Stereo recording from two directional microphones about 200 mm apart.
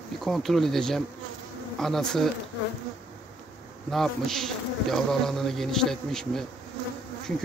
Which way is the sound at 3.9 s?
Centre (ahead or behind).